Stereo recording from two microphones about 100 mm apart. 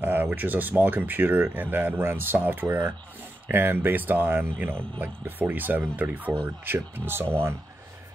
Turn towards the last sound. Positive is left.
turn(degrees=-20)  # may be behind; listen again after turning